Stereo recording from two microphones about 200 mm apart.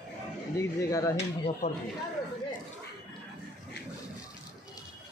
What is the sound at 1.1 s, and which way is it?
Speech, 35° left (ahead or behind).